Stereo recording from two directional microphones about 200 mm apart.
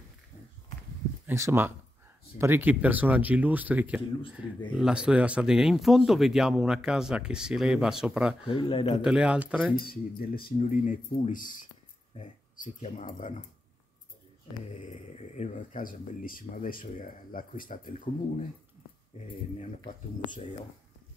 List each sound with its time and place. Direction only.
1.2 s speech: 15° right (ahead or behind)
8.5 s speech: 25° left (ahead or behind)
9.0 s speech: 5° right (ahead or behind)
9.8 s speech: 50° left (ahead or behind)
14.8 s speech: 35° left (ahead or behind)